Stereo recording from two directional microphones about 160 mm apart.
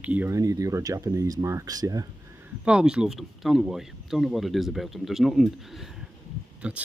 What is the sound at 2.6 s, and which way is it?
Speech, 5° right (ahead or behind).